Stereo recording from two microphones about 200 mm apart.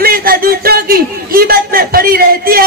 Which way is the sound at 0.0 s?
45° right (ahead or behind).